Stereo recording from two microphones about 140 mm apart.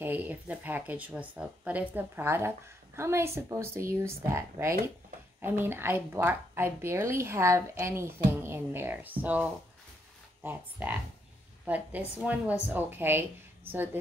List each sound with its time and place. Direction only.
0.0 s a woman's voice: 10° right (ahead or behind)